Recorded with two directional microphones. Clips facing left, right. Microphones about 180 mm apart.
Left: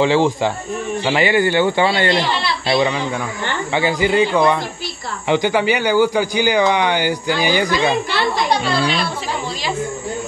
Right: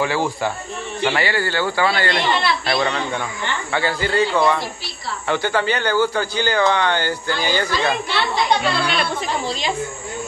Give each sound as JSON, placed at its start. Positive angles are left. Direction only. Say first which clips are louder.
{"t": 0.0, "sound": "a man's voice", "louder": "left 6 dB", "side_deg": 20}